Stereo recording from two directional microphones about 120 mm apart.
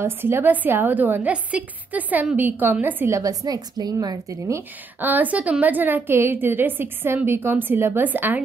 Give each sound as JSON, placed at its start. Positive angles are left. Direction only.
{"t": 0.0, "sound": "a woman's voice", "side_deg": -20}
{"t": 3.2, "sound": "a woman's voice", "side_deg": -30}